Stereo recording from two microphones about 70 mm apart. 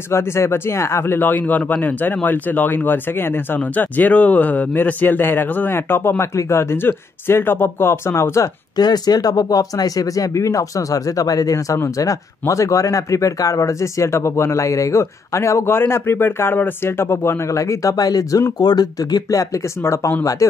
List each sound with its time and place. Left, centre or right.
0.1 s speech: left
8.7 s speech: left
18.6 s speech: left
19.8 s speech: left